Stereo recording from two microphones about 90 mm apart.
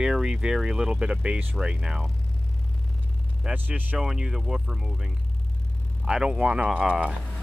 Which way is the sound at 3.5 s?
20° right (ahead or behind).